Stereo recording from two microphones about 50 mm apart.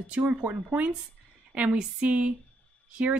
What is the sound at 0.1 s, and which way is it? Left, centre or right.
A woman's voice, right.